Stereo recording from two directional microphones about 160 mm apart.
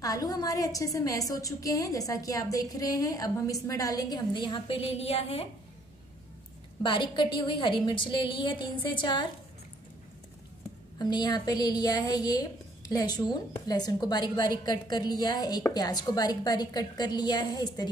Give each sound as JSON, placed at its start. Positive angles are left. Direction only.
{"t": 0.0, "sound": "a woman's voice", "side_deg": 20}
{"t": 6.8, "sound": "a woman's voice", "side_deg": 30}
{"t": 11.0, "sound": "a woman's voice", "side_deg": 25}